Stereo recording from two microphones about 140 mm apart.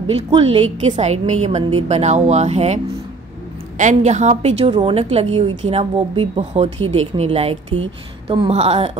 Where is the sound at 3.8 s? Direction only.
55° right (ahead or behind).